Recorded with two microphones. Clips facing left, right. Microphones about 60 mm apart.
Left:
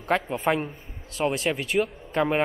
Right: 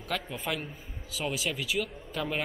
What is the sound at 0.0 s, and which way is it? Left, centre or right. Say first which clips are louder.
Speech: left 9 dB; left.